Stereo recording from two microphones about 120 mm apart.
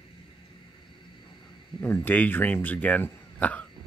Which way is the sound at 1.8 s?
20° left (ahead or behind).